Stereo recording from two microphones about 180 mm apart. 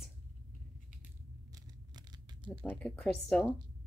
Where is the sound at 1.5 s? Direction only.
25° right (ahead or behind).